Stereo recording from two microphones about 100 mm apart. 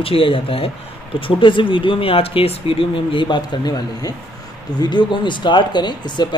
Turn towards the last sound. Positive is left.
turn(degrees=50)  # may be behind; listen again after turning